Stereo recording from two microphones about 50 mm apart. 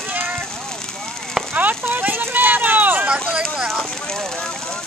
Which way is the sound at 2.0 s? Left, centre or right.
Right.